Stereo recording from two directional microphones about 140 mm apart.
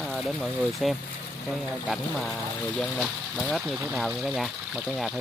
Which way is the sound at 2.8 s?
Centre (ahead or behind).